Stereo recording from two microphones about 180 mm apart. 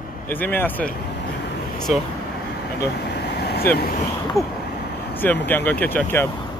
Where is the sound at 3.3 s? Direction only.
60° left (ahead or behind).